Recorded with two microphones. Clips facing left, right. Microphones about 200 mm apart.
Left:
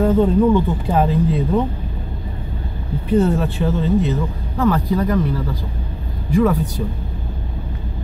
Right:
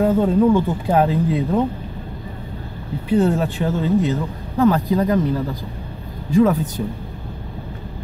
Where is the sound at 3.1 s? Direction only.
15° right (ahead or behind).